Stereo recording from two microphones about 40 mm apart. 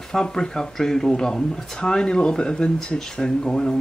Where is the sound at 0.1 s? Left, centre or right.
Centre.